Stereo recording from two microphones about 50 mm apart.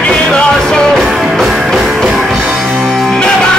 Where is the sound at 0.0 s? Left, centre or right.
Centre.